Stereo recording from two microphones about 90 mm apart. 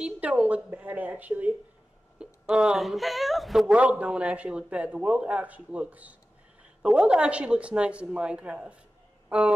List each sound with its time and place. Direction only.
0.0 s speech: 15° right (ahead or behind)
3.6 s speech: 15° right (ahead or behind)